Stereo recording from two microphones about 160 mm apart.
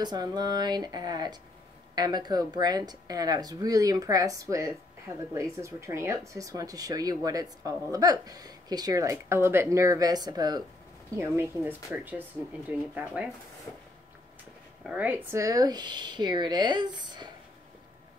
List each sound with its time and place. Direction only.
0.0 s a woman's voice: 25° right (ahead or behind); by 13.3 s 5° right (ahead or behind)
14.8 s speech: 5° right (ahead or behind); by 17.3 s 25° right (ahead or behind)